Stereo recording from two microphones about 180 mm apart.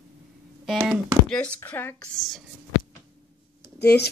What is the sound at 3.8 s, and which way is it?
Speech, 65° left (ahead or behind).